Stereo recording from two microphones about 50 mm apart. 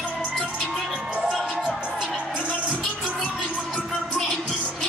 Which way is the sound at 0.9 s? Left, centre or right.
Centre.